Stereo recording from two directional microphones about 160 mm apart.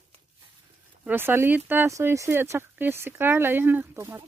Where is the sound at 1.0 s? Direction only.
15° right (ahead or behind).